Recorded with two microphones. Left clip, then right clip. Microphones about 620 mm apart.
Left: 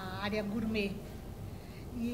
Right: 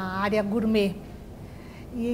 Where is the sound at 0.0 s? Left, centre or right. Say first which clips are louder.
Right 11 dB; right.